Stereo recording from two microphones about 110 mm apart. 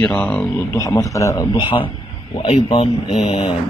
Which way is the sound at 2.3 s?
60° left (ahead or behind).